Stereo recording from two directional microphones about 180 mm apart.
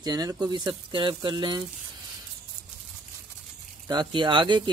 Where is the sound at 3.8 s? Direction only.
25° right (ahead or behind).